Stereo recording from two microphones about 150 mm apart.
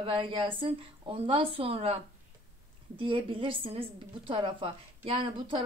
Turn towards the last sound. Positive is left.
turn(degrees=-35)  # may be behind; listen again after turning